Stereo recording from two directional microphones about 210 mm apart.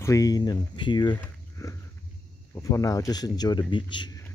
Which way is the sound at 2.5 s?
15° left (ahead or behind).